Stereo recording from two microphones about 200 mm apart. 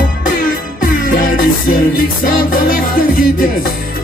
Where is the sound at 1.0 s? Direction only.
45° left (ahead or behind).